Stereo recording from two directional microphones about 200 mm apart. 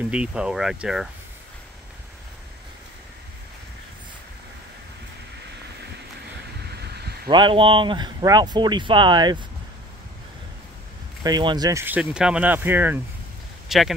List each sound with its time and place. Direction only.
0.1 s speech: 5° right (ahead or behind)
6.6 s a sound: 55° right (ahead or behind)
7.2 s speech: 25° right (ahead or behind)
11.2 s speech: 20° right (ahead or behind); by 13.9 s centre (ahead or behind)